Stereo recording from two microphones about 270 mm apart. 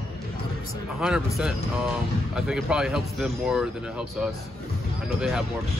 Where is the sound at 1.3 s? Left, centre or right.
Centre.